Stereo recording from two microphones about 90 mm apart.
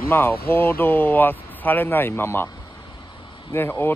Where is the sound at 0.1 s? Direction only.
25° left (ahead or behind).